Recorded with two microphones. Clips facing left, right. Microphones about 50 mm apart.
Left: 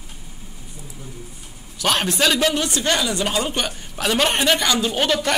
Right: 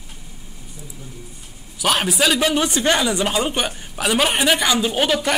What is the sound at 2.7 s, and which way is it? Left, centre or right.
A woman's voice, centre.